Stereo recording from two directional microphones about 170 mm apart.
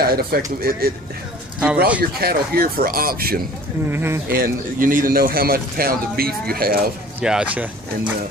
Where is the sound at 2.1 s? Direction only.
65° right (ahead or behind).